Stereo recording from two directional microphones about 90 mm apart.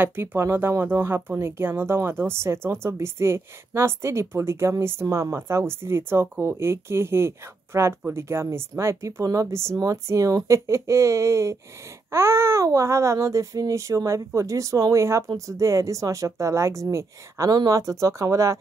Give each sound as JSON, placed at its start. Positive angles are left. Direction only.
{"t": 0.0, "sound": "speech", "side_deg": -25}